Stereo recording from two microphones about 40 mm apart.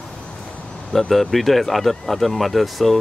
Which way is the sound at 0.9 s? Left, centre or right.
Centre.